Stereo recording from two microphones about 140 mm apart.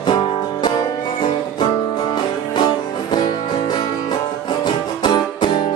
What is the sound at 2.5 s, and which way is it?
Music, 35° left (ahead or behind).